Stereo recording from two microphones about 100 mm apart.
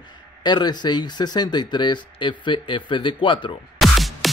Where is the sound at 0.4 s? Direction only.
50° left (ahead or behind).